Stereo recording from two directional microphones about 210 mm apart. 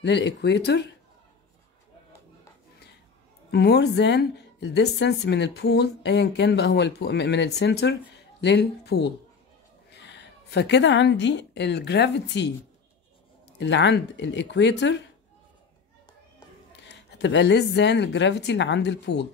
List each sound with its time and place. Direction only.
0.0 s a woman's voice: 55° left (ahead or behind)
3.5 s a woman's voice: 55° left (ahead or behind)
13.6 s speech: 55° left (ahead or behind)
16.8 s speech: 55° left (ahead or behind)